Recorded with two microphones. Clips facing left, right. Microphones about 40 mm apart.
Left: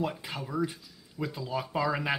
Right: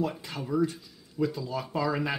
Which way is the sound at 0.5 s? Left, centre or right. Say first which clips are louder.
Right 5 dB; centre.